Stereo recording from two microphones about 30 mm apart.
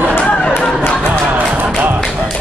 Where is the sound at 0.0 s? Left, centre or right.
Left.